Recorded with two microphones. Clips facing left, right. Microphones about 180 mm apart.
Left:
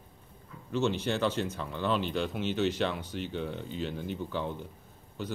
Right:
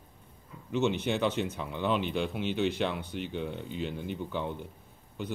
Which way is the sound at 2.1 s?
5° right (ahead or behind).